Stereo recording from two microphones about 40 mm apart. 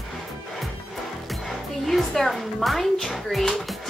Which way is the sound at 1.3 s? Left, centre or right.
Centre.